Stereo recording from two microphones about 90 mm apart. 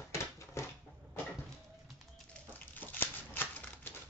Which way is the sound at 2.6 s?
20° left (ahead or behind).